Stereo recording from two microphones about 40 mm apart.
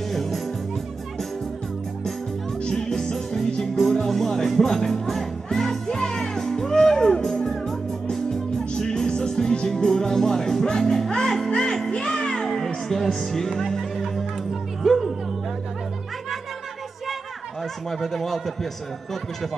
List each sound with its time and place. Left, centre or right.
0.1 s music: centre
2.6 s music: centre
12.4 s music: centre
17.8 s a man's voice: centre